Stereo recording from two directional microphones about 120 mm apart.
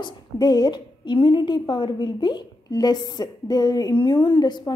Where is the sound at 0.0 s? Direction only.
35° left (ahead or behind).